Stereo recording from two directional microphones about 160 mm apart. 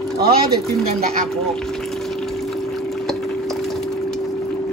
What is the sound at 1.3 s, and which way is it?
Pour, 5° left (ahead or behind).